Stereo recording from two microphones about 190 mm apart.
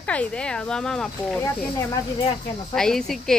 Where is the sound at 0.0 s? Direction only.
5° left (ahead or behind).